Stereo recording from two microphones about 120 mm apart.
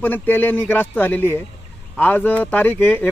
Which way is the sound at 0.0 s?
15° left (ahead or behind).